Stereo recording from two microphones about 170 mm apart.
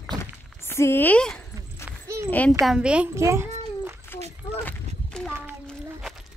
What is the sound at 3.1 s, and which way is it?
Cat, 15° right (ahead or behind).